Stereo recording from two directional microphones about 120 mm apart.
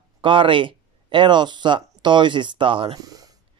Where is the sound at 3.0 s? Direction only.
30° right (ahead or behind).